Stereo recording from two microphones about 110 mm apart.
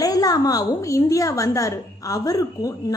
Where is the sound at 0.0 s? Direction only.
35° left (ahead or behind).